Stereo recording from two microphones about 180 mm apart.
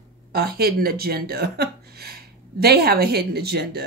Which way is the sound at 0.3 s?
55° right (ahead or behind).